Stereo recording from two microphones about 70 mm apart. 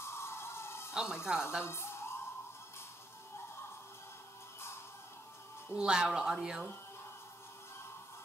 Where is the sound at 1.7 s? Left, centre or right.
Left.